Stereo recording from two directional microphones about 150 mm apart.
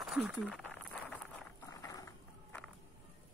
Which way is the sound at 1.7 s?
25° left (ahead or behind).